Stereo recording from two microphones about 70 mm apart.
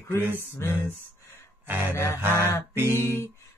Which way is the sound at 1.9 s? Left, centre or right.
Left.